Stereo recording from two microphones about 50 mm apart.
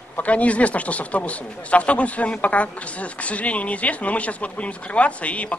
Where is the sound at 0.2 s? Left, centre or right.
Left.